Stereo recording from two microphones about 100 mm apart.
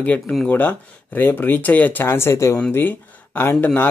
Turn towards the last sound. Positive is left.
turn(degrees=20)  # may be behind; listen again after turning